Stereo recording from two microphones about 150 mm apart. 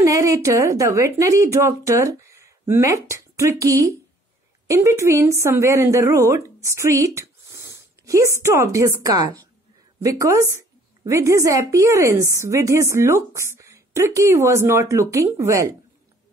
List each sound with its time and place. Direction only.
0.0 s a woman's voice: 20° right (ahead or behind)